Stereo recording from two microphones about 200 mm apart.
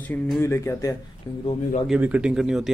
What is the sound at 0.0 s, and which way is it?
Speech, 10° left (ahead or behind).